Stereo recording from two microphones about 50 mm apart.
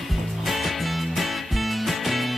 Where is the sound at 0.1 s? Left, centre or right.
Centre.